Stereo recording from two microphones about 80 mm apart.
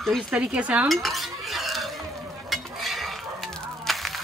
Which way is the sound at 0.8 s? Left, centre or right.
Centre.